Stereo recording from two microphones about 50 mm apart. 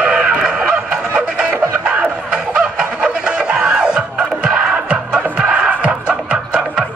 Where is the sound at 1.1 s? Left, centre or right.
Centre.